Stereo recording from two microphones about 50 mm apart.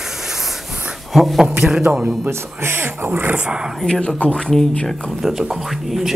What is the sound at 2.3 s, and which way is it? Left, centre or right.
Speech, right.